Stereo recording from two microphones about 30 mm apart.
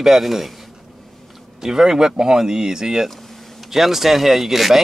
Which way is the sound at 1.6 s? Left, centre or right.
Centre.